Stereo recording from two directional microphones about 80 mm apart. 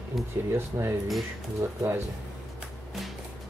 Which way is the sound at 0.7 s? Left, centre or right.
Right.